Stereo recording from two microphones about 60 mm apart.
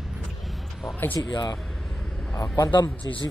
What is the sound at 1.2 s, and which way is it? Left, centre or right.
Speech, left.